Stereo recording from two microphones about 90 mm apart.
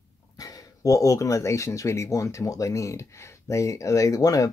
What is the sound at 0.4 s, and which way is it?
Speech, 40° left (ahead or behind).